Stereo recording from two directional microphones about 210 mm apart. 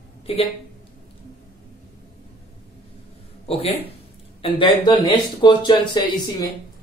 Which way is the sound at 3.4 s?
30° left (ahead or behind).